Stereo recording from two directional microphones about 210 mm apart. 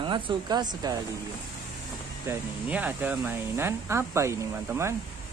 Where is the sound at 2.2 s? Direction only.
10° right (ahead or behind).